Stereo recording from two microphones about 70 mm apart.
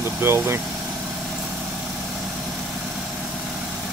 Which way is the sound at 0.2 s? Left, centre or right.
Right.